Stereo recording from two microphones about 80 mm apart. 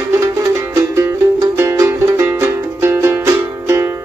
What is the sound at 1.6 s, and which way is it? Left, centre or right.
Music, right.